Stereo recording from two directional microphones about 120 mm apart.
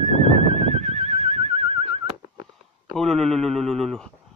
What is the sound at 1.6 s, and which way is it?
Neigh, 55° right (ahead or behind).